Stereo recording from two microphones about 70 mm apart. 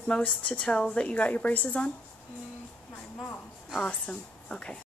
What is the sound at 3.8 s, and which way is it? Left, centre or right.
Speech, centre.